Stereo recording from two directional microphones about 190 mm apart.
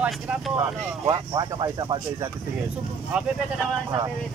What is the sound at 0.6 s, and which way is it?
Speech, 20° right (ahead or behind).